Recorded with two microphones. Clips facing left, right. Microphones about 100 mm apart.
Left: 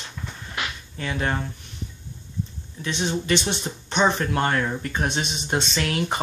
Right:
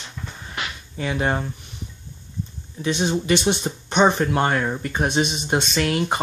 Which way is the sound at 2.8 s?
10° right (ahead or behind).